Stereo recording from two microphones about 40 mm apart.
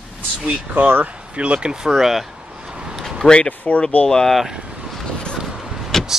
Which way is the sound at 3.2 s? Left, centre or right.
Centre.